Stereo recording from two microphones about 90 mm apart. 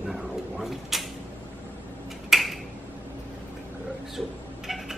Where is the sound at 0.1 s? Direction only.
5° right (ahead or behind).